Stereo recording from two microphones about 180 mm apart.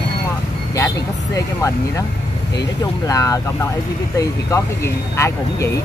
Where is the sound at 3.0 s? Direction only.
20° left (ahead or behind).